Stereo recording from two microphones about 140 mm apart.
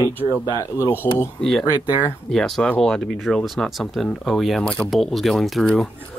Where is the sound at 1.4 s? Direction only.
Centre (ahead or behind).